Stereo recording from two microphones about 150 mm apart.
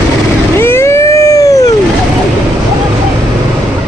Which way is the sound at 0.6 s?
15° left (ahead or behind).